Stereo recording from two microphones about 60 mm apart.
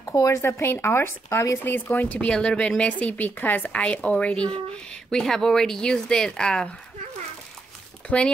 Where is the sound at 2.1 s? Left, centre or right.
Centre.